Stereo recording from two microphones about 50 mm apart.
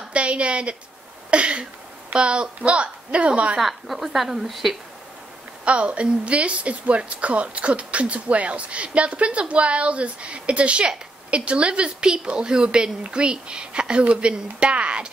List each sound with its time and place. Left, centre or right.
0.1 s a woman's voice: right
1.3 s a sound: right
2.1 s a woman's voice: centre
3.5 s speech: centre
5.7 s a woman's voice: right